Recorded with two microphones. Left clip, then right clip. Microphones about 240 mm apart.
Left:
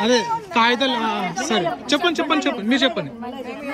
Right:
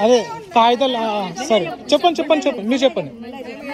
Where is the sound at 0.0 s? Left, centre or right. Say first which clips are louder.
Right 3 dB; centre.